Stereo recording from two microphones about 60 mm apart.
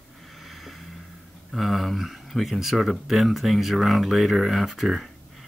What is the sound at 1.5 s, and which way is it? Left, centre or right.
Speech, centre.